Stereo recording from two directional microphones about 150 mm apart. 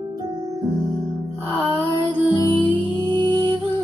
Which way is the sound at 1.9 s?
30° left (ahead or behind).